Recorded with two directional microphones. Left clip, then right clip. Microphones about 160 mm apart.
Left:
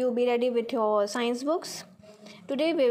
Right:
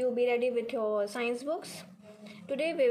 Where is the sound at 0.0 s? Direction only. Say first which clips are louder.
Left 3 dB; 35° left (ahead or behind).